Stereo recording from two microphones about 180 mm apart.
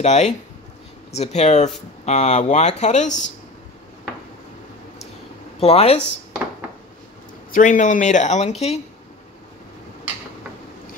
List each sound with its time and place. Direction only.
0.0 s speech: 40° left (ahead or behind)
5.6 s speech: 35° left (ahead or behind)
7.5 s speech: 45° left (ahead or behind)